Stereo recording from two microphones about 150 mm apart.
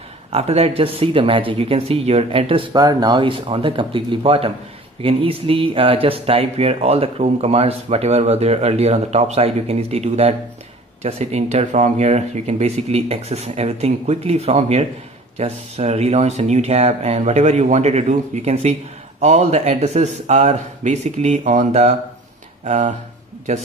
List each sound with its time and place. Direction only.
0.3 s speech: 45° right (ahead or behind)